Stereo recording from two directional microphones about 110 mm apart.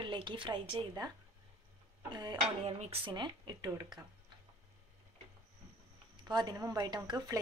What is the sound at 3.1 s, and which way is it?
Speech, 45° right (ahead or behind).